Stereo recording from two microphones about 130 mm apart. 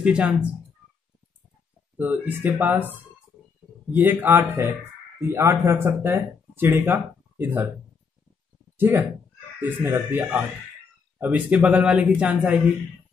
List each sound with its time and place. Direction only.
0.0 s speech: 10° right (ahead or behind)
2.0 s speech: 15° right (ahead or behind)
3.9 s speech: 15° right (ahead or behind)
8.7 s speech: 15° right (ahead or behind)